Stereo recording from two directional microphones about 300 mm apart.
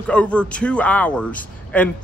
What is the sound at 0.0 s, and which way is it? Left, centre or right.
Speech, centre.